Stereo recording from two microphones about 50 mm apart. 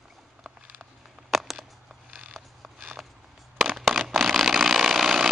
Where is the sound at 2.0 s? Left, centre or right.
Right.